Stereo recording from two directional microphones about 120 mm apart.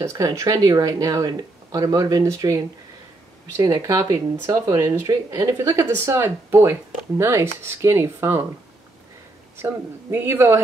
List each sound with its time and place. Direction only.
0.0 s speech: 25° right (ahead or behind)
10.1 s speech: 20° right (ahead or behind)